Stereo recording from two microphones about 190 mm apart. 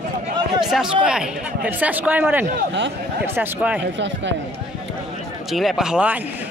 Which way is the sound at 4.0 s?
70° right (ahead or behind).